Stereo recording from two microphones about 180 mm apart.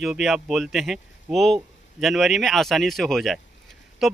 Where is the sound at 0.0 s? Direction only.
Centre (ahead or behind).